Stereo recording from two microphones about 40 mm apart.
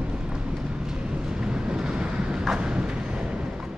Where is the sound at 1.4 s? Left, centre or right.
Centre.